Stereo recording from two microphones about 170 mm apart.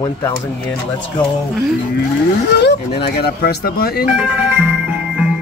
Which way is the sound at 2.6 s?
75° left (ahead or behind).